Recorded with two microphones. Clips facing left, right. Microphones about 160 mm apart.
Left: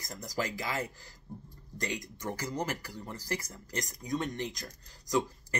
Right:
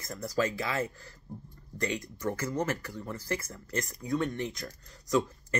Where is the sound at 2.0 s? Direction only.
15° left (ahead or behind).